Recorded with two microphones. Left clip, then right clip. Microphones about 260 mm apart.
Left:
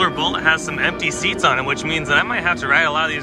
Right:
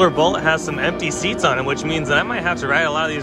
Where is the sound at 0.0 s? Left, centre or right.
Centre.